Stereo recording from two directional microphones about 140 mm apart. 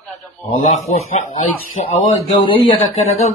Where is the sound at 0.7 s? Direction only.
50° left (ahead or behind).